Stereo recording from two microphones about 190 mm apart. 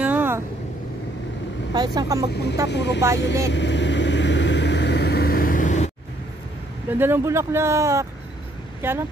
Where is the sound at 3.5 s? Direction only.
70° left (ahead or behind); by 5.9 s 40° left (ahead or behind).